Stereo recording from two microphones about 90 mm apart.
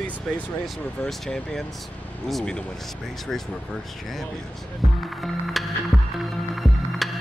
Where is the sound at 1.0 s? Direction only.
5° left (ahead or behind).